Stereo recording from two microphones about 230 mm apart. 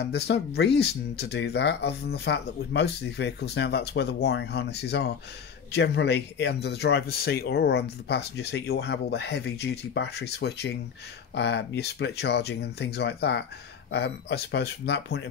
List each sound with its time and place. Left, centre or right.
0.6 s speech: left